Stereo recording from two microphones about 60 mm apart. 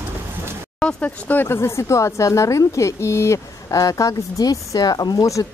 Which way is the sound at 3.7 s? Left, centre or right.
Left.